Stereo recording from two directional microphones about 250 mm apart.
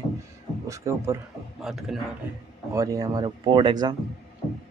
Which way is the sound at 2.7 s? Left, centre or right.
Centre.